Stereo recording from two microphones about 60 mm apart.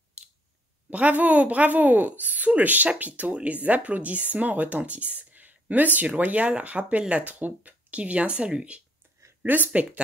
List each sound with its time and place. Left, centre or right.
0.8 s speech: right